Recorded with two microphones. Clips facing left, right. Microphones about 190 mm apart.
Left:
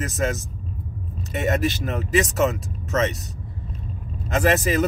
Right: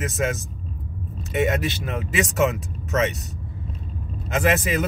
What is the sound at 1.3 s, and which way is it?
Speech, 45° left (ahead or behind).